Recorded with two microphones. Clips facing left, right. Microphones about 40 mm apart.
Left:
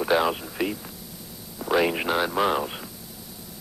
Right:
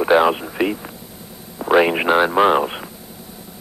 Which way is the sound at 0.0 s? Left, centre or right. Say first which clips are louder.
Right 8 dB; right.